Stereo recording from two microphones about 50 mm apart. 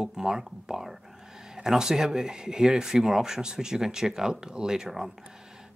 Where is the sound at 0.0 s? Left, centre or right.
Centre.